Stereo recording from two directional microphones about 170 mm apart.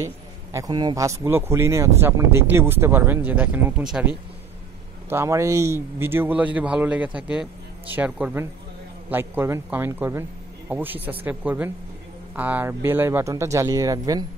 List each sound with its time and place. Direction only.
0.5 s a man's voice: 20° right (ahead or behind); by 4.1 s 5° right (ahead or behind)
5.1 s a man's voice: 15° right (ahead or behind)